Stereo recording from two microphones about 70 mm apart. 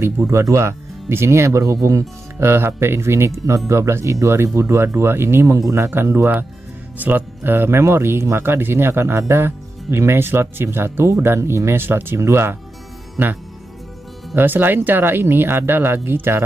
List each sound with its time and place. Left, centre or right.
0.3 s speech: right
2.3 s speech: right
14.3 s speech: right